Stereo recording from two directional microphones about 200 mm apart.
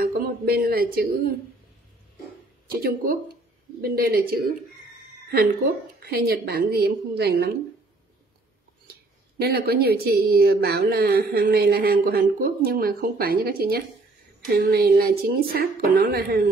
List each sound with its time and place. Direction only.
0.0 s a sound: 45° right (ahead or behind)
2.7 s a woman's voice: 50° right (ahead or behind)
5.9 s a woman's voice: 50° right (ahead or behind)
9.4 s a woman's voice: 50° right (ahead or behind)